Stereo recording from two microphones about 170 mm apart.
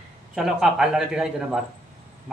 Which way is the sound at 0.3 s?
5° right (ahead or behind).